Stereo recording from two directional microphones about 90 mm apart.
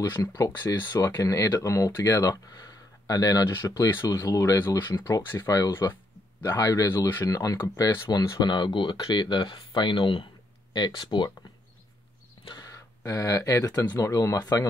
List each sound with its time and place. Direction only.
0.1 s speech: 40° left (ahead or behind)
4.6 s speech: 25° left (ahead or behind)
8.4 s speech: 55° left (ahead or behind)
12.4 s a sound: 55° left (ahead or behind)
13.0 s speech: 35° left (ahead or behind)